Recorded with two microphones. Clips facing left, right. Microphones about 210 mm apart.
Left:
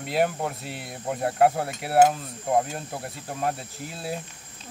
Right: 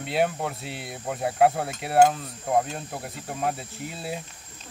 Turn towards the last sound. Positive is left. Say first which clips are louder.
# even
turn(degrees=0)  # may be behind; listen again after turning